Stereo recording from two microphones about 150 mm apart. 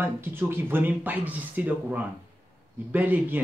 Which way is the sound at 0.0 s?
15° right (ahead or behind).